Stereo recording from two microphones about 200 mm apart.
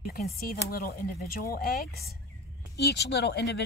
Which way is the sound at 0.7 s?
45° left (ahead or behind).